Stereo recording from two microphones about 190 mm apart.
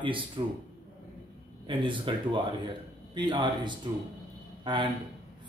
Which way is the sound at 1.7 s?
25° right (ahead or behind).